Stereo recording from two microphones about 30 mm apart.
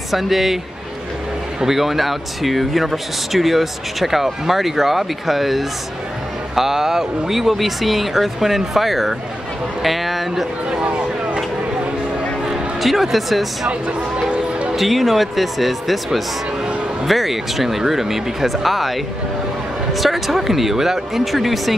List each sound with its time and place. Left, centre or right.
0.1 s speech: centre
1.6 s speech: centre
10.7 s a sound: right
12.8 s speech: centre
14.3 s music: right
14.8 s speech: centre